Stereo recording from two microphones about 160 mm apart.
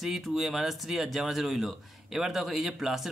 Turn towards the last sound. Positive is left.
turn(degrees=0)  # may be behind; listen again after turning